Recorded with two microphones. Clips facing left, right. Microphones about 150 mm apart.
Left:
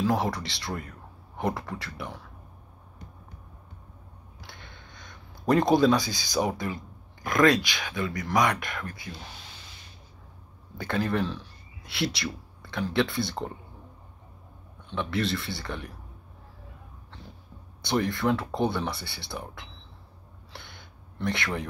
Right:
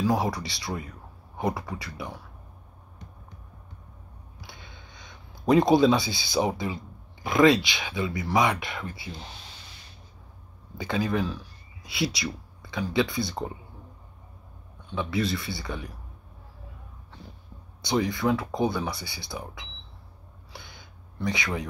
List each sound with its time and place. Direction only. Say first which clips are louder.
0.2 s speech: right 1 dB; centre (ahead or behind)
4.6 s a sound: even; centre (ahead or behind)
6.0 s speech: right 1 dB; 25° right (ahead or behind)
7.2 s speech: right 2 dB; 5° right (ahead or behind)
7.5 s speech: right 1 dB; 20° right (ahead or behind)
7.8 s speech: right 1 dB; 5° right (ahead or behind)
10.8 s speech: even; centre (ahead or behind)
15.0 s speech: right 1 dB; 5° right (ahead or behind)
17.9 s speech: right 1 dB; centre (ahead or behind)
20.5 s gasp: even; centre (ahead or behind)